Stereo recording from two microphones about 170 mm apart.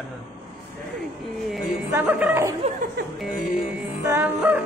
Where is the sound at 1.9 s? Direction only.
10° right (ahead or behind).